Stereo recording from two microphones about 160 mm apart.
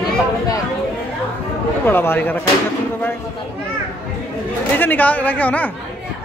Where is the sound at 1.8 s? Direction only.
15° left (ahead or behind).